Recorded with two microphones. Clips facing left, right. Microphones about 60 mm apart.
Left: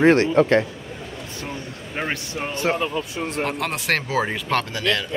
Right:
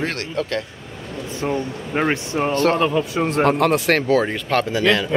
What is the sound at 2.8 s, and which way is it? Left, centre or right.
Speech, right.